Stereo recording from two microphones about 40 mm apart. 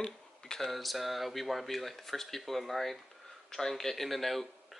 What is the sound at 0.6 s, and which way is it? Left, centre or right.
Speech, centre.